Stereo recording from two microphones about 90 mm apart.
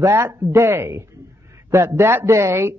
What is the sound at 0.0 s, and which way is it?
Speech, 30° right (ahead or behind).